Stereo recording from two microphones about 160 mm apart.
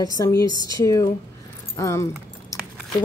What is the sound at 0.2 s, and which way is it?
Speech, 20° left (ahead or behind).